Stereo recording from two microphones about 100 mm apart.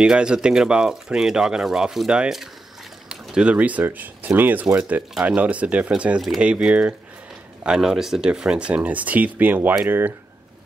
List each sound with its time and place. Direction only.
0.0 s speech: 10° right (ahead or behind)